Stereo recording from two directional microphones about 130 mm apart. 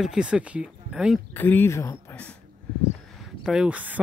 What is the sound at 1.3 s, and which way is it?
Speech, 15° left (ahead or behind).